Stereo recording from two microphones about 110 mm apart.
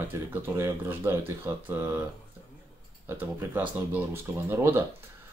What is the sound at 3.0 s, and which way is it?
Speech, 20° right (ahead or behind).